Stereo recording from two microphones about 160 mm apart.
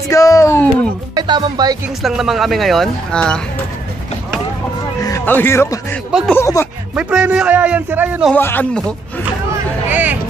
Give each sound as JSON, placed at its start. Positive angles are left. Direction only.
{"t": 0.1, "sound": "music", "side_deg": 20}
{"t": 1.1, "sound": "speech", "side_deg": -25}
{"t": 2.0, "sound": "speech", "side_deg": 0}
{"t": 5.0, "sound": "speech", "side_deg": 15}
{"t": 7.0, "sound": "a man's voice", "side_deg": -5}
{"t": 8.3, "sound": "speech", "side_deg": 15}
{"t": 9.8, "sound": "vehicle", "side_deg": -10}